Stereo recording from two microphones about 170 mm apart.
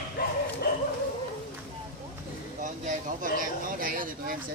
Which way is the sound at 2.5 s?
50° right (ahead or behind).